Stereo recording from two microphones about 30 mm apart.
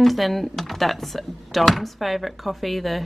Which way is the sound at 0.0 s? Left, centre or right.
Centre.